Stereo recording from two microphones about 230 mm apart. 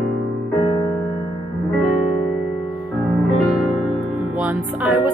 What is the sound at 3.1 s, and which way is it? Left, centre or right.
Music, centre.